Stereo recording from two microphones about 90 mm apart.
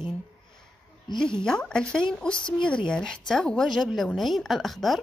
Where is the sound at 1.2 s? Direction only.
10° left (ahead or behind).